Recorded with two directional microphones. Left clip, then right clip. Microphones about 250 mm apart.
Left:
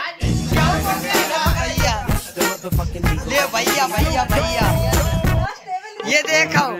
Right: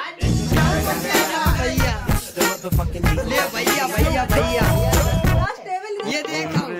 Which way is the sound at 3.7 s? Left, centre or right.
Centre.